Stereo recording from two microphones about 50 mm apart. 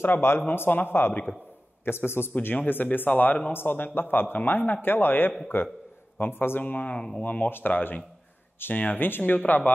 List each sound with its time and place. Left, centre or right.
0.0 s a man's voice: left
0.5 s a man's voice: left
2.5 s a man's voice: left
6.6 s speech: left
7.0 s speech: left
7.2 s speech: left